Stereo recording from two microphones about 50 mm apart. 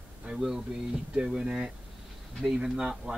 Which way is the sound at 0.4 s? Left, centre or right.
Centre.